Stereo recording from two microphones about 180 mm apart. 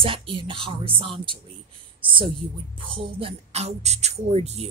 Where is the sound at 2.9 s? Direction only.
35° right (ahead or behind).